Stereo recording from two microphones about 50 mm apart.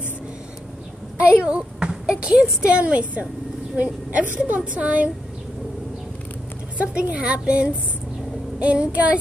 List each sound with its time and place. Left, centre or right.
1.4 s a woman's voice: right
6.8 s a woman's voice: right